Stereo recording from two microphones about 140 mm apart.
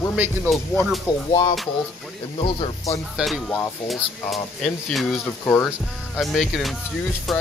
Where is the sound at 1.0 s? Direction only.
35° left (ahead or behind).